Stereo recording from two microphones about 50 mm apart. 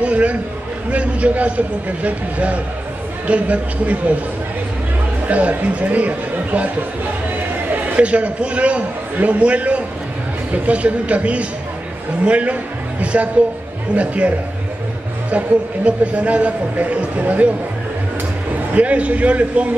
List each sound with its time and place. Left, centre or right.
0.0 s a man's voice: right
5.2 s speech: right
7.7 s a man's voice: right
15.3 s a man's voice: right
18.8 s a man's voice: right